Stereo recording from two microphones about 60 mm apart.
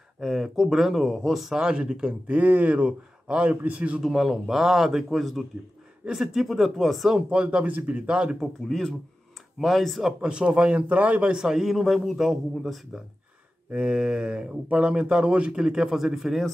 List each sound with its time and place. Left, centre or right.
0.2 s speech: centre; by 4.0 s right
4.0 s speech: centre
7.2 s speech: centre
8.4 s speech: centre
10.2 s speech: centre
13.7 s speech: centre